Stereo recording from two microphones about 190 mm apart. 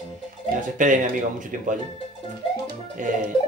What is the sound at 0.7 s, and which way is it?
Speech, 40° right (ahead or behind).